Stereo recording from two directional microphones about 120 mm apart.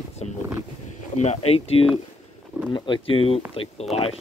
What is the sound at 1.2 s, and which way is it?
Speech, 60° left (ahead or behind).